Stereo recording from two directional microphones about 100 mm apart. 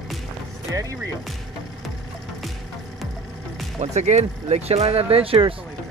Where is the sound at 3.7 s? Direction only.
90° right; by 5.5 s 75° right (ahead or behind).